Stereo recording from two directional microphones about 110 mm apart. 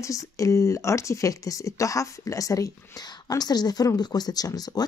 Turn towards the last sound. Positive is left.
turn(degrees=35)  # may be behind; listen again after turning